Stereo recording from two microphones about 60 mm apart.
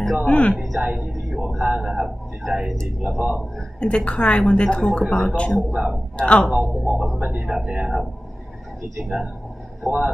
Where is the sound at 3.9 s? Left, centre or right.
Centre.